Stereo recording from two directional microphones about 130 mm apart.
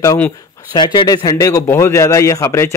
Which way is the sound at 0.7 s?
30° left (ahead or behind).